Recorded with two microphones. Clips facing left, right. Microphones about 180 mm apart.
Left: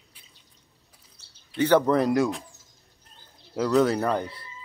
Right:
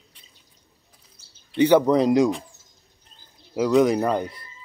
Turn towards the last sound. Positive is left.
turn(degrees=-15)  # may be behind; listen again after turning